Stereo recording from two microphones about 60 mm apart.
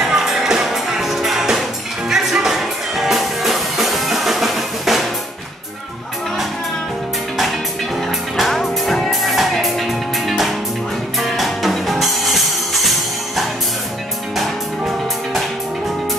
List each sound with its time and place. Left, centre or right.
0.0 s music: centre
8.4 s music: centre